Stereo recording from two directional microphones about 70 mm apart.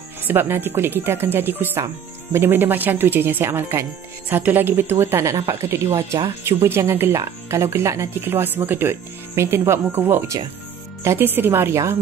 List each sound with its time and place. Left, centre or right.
0.3 s speech: right
4.3 s speech: right
8.2 s speech: right
11.1 s speech: right